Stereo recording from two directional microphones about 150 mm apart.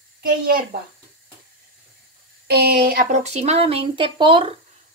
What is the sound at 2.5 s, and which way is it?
Speech, 85° right.